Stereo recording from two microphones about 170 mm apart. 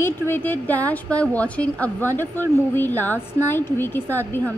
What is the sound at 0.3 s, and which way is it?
Speech, 10° left (ahead or behind).